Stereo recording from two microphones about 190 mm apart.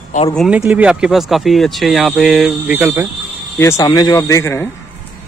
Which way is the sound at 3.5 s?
15° left (ahead or behind).